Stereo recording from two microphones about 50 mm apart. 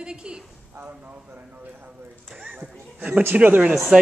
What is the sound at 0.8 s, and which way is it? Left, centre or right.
Speech, right.